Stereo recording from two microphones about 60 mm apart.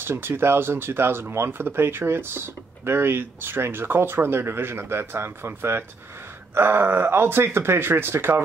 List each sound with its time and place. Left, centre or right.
0.0 s speech: right